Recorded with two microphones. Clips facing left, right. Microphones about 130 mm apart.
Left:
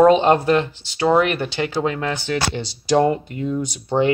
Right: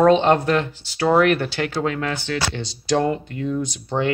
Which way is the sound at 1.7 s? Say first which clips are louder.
Left 2 dB; 15° left (ahead or behind).